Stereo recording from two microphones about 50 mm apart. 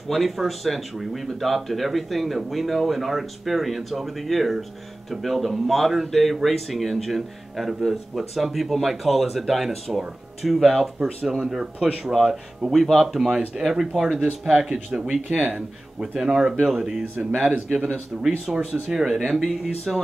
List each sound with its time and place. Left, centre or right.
0.1 s speech: centre
11.2 s speech: centre
12.0 s speech: centre
15.2 s speech: right
15.5 s speech: centre
17.0 s speech: right
18.5 s speech: centre
19.9 s speech: centre